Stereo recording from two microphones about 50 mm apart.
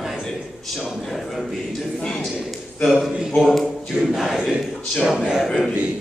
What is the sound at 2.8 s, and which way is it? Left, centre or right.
Speech, centre.